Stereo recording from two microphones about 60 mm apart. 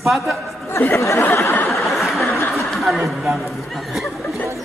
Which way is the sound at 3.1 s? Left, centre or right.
Centre.